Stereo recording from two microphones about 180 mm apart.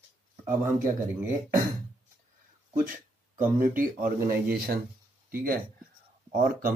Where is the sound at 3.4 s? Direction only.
10° right (ahead or behind).